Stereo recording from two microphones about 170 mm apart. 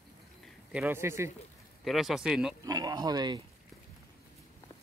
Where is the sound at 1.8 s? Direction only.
Centre (ahead or behind).